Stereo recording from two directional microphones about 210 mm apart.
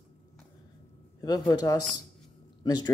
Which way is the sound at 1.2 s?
20° left (ahead or behind).